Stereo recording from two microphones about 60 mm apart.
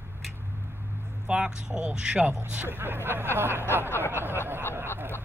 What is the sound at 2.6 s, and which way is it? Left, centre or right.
Speech, right.